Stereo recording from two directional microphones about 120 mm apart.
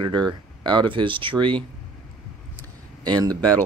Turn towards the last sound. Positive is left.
turn(degrees=-35)  # may be behind; listen again after turning